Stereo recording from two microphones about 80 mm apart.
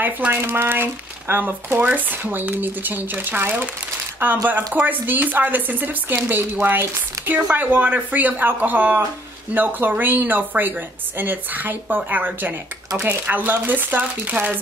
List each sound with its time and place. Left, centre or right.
0.0 s speech: right